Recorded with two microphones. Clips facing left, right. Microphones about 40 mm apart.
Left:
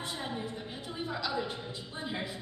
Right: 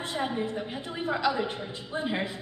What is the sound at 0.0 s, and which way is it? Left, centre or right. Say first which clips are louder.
A woman's voice: right 7 dB; right.